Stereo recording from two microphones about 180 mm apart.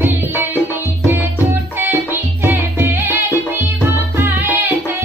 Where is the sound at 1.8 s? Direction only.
10° right (ahead or behind).